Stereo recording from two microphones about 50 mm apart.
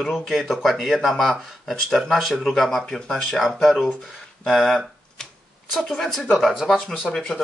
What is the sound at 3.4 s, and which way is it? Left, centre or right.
Speech, centre.